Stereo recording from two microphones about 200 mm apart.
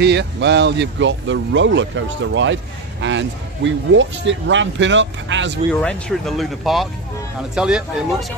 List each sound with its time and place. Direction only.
0.0 s speech: 60° right (ahead or behind)
5.7 s speech: 5° left (ahead or behind)